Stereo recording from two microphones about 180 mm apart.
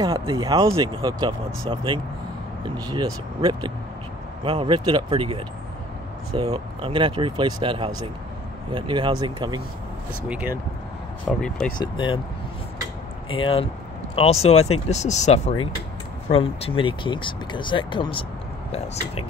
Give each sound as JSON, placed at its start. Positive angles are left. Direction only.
{"t": 0.0, "sound": "speech", "side_deg": -20}
{"t": 2.9, "sound": "speech", "side_deg": -25}
{"t": 10.2, "sound": "speech", "side_deg": -10}
{"t": 11.2, "sound": "speech", "side_deg": 5}
{"t": 11.8, "sound": "speech", "side_deg": 25}
{"t": 13.3, "sound": "speech", "side_deg": 30}